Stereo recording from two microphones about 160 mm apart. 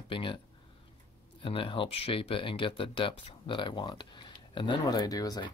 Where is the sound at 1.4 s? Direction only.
35° left (ahead or behind).